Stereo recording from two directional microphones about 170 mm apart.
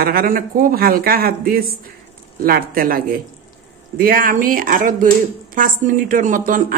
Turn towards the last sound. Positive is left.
turn(degrees=-55)  # may be behind; listen again after turning